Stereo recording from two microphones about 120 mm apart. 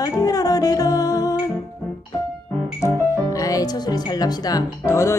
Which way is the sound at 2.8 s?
25° left (ahead or behind).